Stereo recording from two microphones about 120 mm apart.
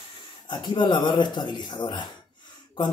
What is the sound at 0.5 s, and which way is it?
Speech, 40° left (ahead or behind).